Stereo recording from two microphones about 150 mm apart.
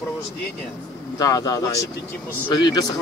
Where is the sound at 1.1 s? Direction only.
25° left (ahead or behind).